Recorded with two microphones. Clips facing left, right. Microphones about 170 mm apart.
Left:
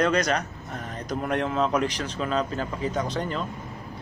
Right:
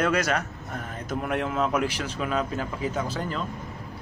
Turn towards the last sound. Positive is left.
turn(degrees=-5)  # may be behind; listen again after turning